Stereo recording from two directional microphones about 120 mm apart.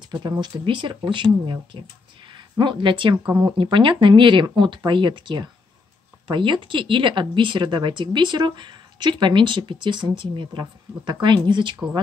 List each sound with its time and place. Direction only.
0.1 s speech: 35° right (ahead or behind)